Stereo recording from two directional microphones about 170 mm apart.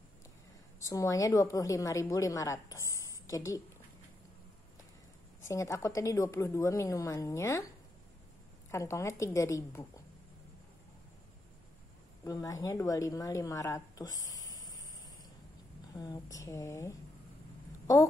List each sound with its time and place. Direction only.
0.7 s a woman's voice: 20° left (ahead or behind)
5.5 s a woman's voice: 15° left (ahead or behind)
8.7 s a woman's voice: 15° left (ahead or behind)
12.3 s a woman's voice: 20° left (ahead or behind)
16.0 s a woman's voice: 20° left (ahead or behind)